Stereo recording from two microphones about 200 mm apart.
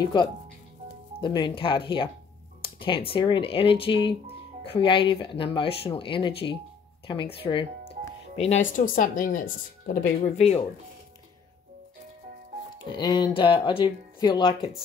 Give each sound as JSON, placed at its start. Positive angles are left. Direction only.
{"t": 0.0, "sound": "speech", "side_deg": 20}
{"t": 8.7, "sound": "speech", "side_deg": 40}
{"t": 12.9, "sound": "speech", "side_deg": 20}